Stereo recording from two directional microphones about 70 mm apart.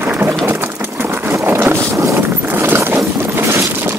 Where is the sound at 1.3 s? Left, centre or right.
Right.